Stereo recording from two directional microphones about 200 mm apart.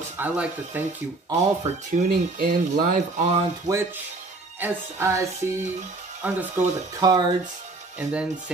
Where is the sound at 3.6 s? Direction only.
15° right (ahead or behind).